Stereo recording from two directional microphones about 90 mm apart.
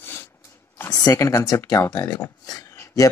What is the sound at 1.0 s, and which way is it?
Speech, 40° left (ahead or behind).